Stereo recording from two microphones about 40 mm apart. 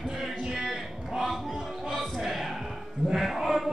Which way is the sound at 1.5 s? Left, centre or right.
Centre.